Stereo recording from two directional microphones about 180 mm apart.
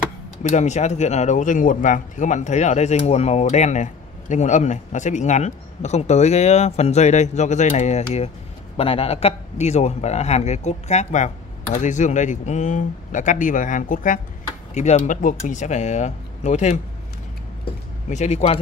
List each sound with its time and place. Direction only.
0.4 s speech: 40° left (ahead or behind)
18.1 s speech: 40° left (ahead or behind)